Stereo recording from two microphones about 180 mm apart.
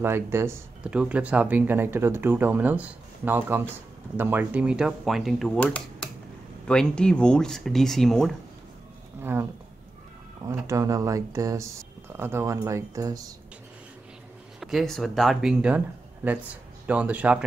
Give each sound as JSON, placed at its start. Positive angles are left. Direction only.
{"t": 0.0, "sound": "speech", "side_deg": -15}
{"t": 9.2, "sound": "speech", "side_deg": -10}
{"t": 10.5, "sound": "speech", "side_deg": -20}
{"t": 14.6, "sound": "speech", "side_deg": 0}